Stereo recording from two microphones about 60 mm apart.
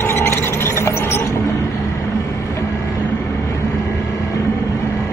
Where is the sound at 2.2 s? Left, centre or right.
Left.